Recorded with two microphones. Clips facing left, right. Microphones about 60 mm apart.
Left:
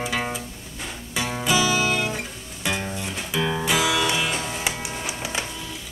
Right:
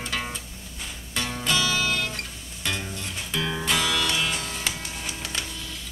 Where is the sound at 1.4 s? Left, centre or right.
Centre.